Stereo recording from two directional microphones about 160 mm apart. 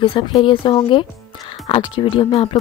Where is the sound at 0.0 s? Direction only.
30° left (ahead or behind).